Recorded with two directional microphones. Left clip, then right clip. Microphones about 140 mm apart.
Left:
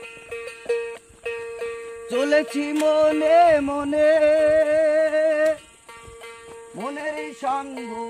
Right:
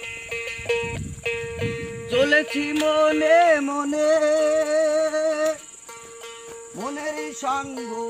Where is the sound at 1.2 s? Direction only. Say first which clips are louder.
Right 2 dB; 70° left (ahead or behind).